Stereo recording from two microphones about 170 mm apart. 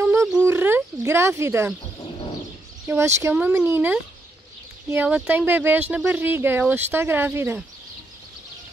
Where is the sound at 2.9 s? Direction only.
15° right (ahead or behind).